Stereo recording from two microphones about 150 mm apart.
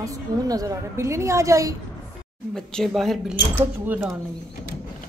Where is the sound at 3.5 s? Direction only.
10° right (ahead or behind).